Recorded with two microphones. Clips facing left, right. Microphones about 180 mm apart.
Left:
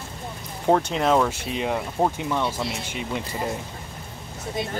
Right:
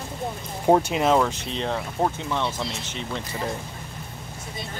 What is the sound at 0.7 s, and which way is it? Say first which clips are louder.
Speech: right 1 dB; 10° right (ahead or behind).